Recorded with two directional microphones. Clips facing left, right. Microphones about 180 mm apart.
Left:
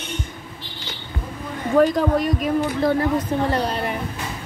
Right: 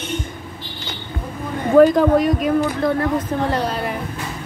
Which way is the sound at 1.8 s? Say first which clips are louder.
Right 5 dB; centre (ahead or behind).